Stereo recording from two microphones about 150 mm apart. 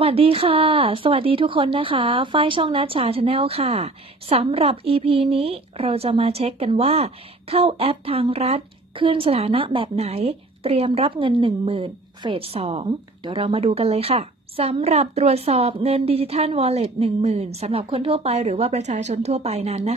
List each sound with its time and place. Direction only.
0.0 s speech: 40° right (ahead or behind)